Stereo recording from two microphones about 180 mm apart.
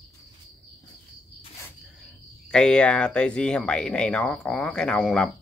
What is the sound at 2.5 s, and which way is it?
Speech, 5° left (ahead or behind).